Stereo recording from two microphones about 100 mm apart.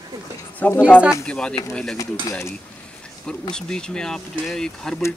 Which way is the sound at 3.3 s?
5° left (ahead or behind).